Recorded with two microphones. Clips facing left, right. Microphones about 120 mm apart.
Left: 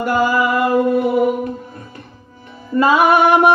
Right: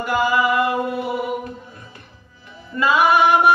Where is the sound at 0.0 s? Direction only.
45° left (ahead or behind).